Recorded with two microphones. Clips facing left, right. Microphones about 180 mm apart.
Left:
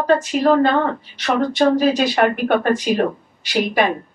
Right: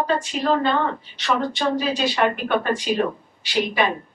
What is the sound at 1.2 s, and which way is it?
Speech, 45° left (ahead or behind).